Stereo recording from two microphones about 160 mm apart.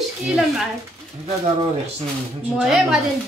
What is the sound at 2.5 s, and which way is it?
Speech, centre (ahead or behind).